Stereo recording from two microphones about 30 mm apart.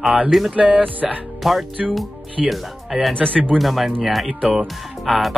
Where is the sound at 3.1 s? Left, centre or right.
Left.